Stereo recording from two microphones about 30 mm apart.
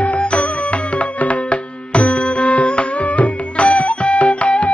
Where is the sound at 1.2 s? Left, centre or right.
Left.